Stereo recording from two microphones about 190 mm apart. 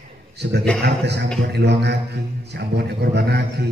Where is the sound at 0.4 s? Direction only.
60° right (ahead or behind).